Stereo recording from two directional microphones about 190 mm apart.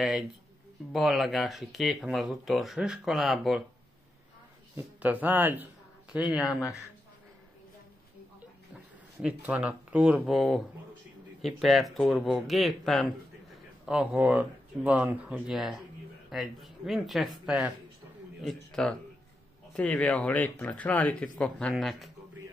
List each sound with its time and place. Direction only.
0.9 s speech: centre (ahead or behind)
4.7 s speech: 10° right (ahead or behind)
9.2 s speech: 5° right (ahead or behind)